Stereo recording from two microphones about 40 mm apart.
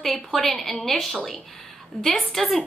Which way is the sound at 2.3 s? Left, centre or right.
Centre.